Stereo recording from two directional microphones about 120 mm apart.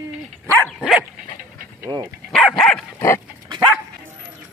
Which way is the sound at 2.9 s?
20° left (ahead or behind).